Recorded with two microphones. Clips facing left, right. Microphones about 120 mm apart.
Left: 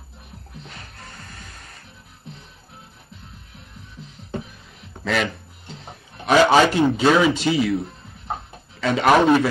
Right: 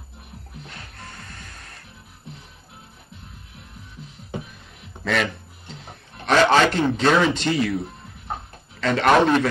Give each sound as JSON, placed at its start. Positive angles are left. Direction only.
{"t": 0.7, "sound": "music", "side_deg": 0}
{"t": 5.0, "sound": "a sound", "side_deg": 0}
{"t": 6.2, "sound": "speech", "side_deg": 5}
{"t": 8.8, "sound": "a man's voice", "side_deg": 5}